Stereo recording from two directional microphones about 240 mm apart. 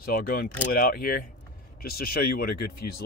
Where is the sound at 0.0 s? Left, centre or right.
Left.